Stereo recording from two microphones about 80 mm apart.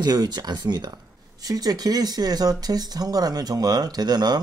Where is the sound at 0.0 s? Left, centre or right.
Right.